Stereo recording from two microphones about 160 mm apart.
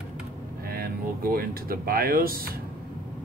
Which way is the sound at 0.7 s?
70° right (ahead or behind).